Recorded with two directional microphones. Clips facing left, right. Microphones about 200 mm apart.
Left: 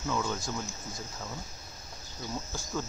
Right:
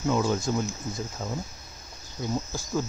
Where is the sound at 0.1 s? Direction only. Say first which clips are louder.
Right 7 dB; 30° right (ahead or behind).